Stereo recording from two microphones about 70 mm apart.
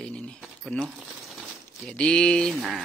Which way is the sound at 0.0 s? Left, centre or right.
Centre.